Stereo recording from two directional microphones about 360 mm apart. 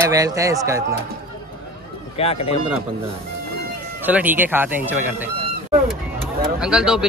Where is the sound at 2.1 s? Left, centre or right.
Centre.